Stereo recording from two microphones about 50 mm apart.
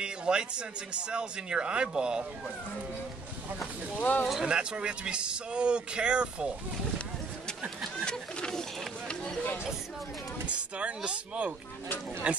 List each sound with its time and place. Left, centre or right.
0.0 s speech: centre
4.0 s speech: left
4.5 s speech: centre
8.0 s speech: centre
10.4 s speech: right